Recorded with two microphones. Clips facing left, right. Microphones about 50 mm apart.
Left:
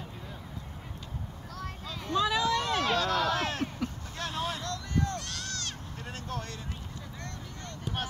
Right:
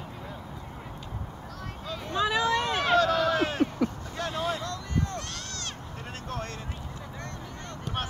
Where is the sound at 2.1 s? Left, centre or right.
Right.